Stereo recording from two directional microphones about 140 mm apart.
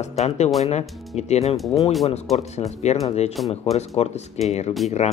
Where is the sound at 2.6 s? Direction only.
50° left (ahead or behind).